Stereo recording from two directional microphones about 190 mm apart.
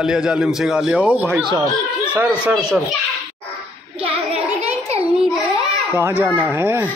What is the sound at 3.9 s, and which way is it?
Child singing, 30° right (ahead or behind).